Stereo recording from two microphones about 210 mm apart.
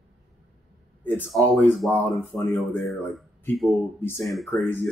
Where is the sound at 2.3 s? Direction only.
15° left (ahead or behind).